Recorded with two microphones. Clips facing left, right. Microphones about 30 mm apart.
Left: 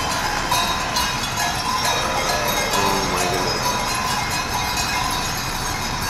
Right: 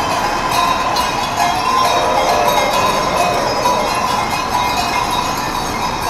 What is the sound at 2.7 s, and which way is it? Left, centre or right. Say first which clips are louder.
Music: right 5 dB; centre.